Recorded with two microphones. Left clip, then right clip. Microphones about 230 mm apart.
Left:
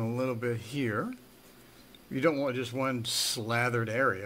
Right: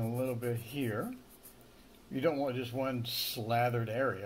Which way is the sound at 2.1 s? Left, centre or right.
Left.